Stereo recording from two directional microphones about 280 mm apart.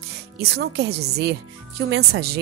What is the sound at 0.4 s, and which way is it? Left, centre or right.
Speech, right.